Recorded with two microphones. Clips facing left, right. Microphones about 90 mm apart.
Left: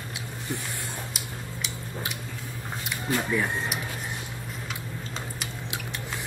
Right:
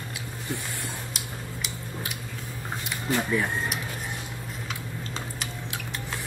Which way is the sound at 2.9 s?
Centre (ahead or behind).